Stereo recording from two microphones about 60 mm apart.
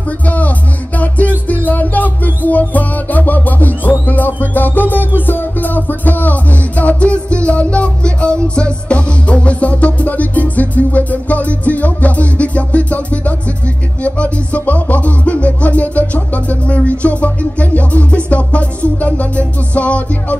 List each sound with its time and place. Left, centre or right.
0.9 s music: left